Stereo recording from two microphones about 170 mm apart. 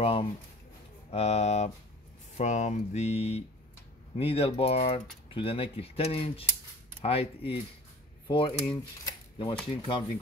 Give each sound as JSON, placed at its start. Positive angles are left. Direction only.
{"t": 0.0, "sound": "speech", "side_deg": 35}